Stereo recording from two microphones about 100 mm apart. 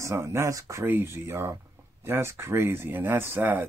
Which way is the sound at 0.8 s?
20° right (ahead or behind).